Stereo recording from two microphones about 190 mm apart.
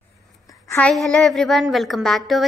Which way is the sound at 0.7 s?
5° left (ahead or behind).